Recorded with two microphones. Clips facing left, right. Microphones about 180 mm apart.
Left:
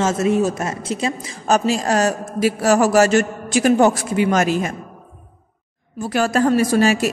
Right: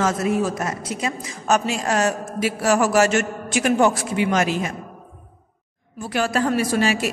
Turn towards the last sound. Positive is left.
turn(degrees=40)  # may be behind; listen again after turning